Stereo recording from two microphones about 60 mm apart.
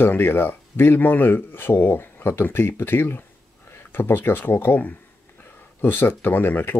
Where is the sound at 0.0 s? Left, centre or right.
Left.